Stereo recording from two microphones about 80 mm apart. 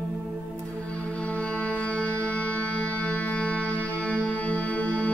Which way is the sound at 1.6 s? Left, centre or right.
Centre.